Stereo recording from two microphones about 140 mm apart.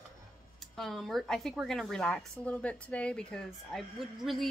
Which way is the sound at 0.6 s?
Centre (ahead or behind).